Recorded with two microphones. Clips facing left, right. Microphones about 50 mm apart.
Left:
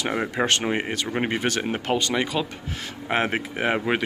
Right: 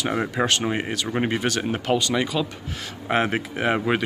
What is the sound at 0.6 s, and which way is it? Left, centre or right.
Speech, left.